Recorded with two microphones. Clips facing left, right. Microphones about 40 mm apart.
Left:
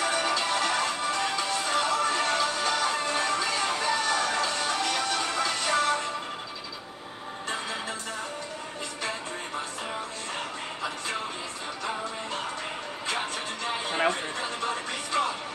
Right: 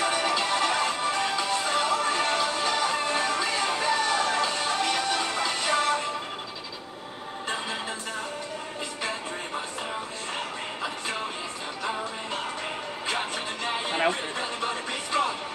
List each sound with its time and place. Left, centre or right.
0.0 s music: centre
13.9 s a sound: centre
15.1 s music: centre